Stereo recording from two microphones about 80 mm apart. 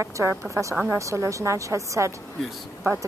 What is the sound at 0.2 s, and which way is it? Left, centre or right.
Speech, right.